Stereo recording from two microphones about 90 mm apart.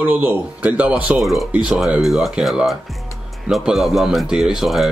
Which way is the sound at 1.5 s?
10° right (ahead or behind).